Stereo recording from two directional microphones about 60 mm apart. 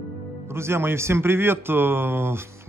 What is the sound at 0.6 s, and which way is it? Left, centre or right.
A man's voice, right.